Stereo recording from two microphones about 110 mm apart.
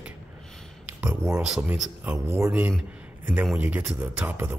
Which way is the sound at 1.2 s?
10° right (ahead or behind).